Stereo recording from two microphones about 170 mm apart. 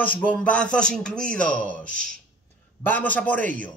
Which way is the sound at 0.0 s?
10° left (ahead or behind).